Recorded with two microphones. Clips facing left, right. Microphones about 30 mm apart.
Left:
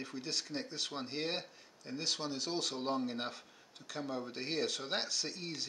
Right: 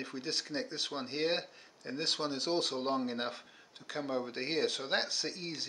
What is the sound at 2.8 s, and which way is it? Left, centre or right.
A man's voice, centre.